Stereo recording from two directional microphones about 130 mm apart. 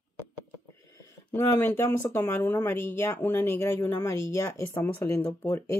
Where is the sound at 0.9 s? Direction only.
20° left (ahead or behind).